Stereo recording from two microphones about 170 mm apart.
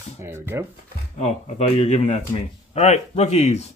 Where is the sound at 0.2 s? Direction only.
15° right (ahead or behind).